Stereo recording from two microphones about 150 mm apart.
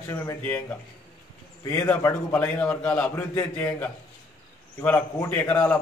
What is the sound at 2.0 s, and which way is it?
A man's voice, 20° left (ahead or behind).